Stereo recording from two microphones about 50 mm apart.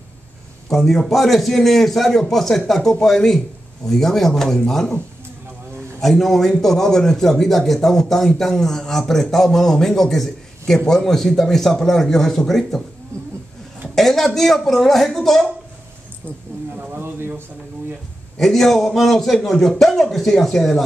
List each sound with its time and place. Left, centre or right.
0.7 s a man's voice: centre
5.9 s a man's voice: centre
13.1 s roaring cats: right
13.9 s a man's voice: centre
16.7 s a sound: right
18.4 s a man's voice: centre